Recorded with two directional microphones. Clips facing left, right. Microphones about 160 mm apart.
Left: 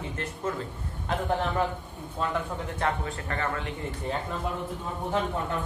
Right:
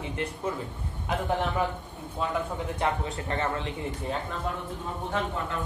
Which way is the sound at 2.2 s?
5° right (ahead or behind).